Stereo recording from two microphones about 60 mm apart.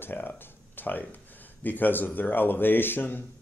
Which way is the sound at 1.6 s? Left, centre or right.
Left.